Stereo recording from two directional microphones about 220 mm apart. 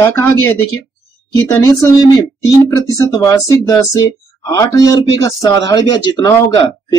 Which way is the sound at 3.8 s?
15° left (ahead or behind).